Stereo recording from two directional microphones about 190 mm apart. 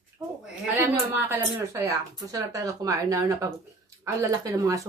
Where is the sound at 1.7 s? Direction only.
20° right (ahead or behind).